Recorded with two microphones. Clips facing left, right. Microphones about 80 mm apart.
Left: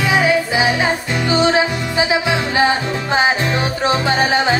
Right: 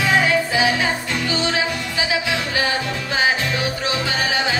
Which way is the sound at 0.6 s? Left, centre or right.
Left.